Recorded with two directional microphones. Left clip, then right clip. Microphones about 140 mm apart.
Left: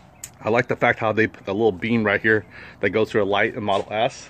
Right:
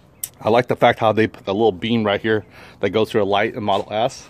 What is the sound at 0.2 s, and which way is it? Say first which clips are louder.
Speech: right 4 dB; 35° right (ahead or behind).